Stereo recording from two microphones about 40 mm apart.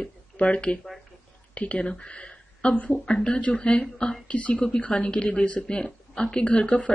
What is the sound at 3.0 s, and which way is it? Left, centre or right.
Speech, centre.